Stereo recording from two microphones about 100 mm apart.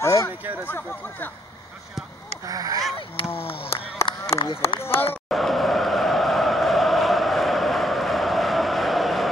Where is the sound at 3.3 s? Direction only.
70° left (ahead or behind).